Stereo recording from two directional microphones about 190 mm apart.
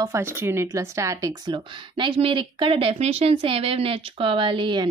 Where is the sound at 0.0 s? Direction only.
15° right (ahead or behind).